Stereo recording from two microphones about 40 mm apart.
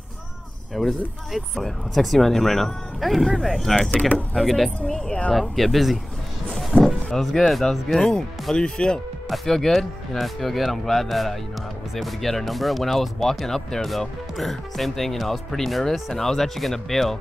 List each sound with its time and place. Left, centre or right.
0.7 s speech: centre
4.8 s speech: centre
5.3 s speech: centre
6.7 s a sound: left
7.1 s speech: centre
9.3 s speech: centre